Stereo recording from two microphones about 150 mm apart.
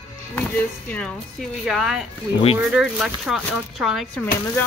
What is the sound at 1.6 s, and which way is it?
Speech, 5° right (ahead or behind).